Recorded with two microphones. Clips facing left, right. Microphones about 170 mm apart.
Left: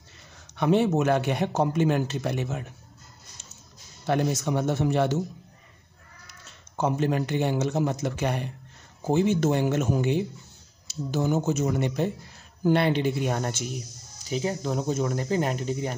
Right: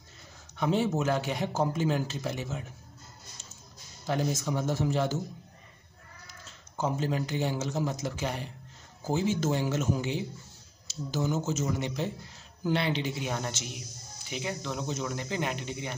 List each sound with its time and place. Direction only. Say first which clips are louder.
0.6 s speech: left 6 dB; 65° left (ahead or behind)
4.0 s speech: left 5 dB; 65° left (ahead or behind)
6.8 s speech: left 5 dB; 65° left (ahead or behind)
13.7 s speech: left 6 dB; 40° left (ahead or behind)